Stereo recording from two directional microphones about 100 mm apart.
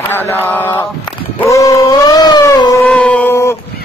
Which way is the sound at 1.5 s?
35° left (ahead or behind).